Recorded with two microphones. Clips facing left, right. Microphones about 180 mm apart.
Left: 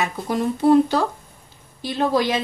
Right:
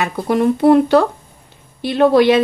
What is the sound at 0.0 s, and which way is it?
A woman's voice, 65° right (ahead or behind).